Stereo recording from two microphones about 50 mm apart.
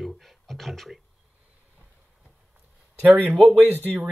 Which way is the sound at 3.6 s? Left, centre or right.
Right.